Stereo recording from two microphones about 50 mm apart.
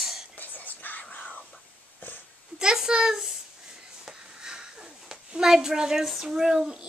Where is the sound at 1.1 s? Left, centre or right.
Left.